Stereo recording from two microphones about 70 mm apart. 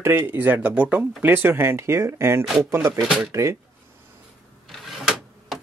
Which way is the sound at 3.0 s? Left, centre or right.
Centre.